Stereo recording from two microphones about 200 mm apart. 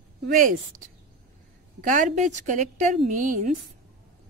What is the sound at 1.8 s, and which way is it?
A woman's voice, 40° right (ahead or behind).